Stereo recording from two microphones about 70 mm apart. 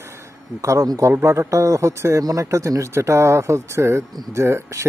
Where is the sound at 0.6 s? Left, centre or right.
Right.